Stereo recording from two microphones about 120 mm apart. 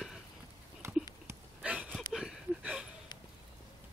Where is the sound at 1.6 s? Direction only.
10° right (ahead or behind).